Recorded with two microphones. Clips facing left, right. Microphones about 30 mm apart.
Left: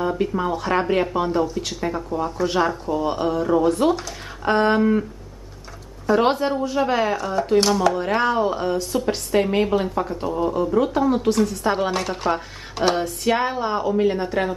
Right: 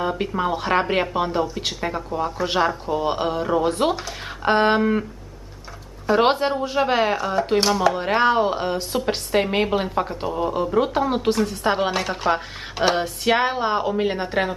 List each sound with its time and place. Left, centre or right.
0.0 s a sound: right
0.4 s speech: right
6.0 s speech: right
7.9 s speech: right
10.8 s speech: right
11.3 s speech: right
12.9 s speech: right